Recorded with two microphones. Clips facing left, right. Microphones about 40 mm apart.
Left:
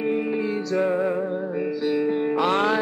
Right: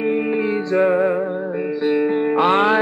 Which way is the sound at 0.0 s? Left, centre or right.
Right.